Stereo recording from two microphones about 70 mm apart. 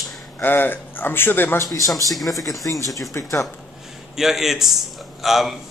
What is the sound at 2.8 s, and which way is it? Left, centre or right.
Speech, left.